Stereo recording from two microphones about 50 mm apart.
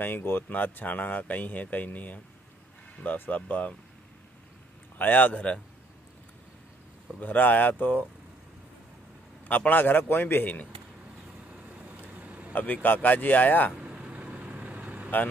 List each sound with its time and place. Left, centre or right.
0.0 s speech: left
0.5 s speech: left
3.2 s speech: left
4.9 s speech: left
7.2 s speech: left
9.5 s speech: left
11.5 s hiccup: right
12.5 s speech: left
13.7 s vehicle: right